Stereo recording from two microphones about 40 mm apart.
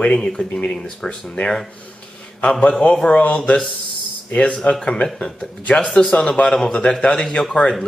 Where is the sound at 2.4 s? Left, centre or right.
Left.